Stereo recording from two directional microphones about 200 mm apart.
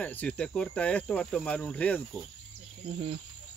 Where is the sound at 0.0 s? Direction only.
5° left (ahead or behind).